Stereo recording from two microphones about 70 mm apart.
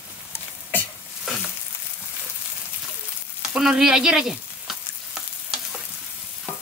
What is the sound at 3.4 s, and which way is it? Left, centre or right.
Frying, centre.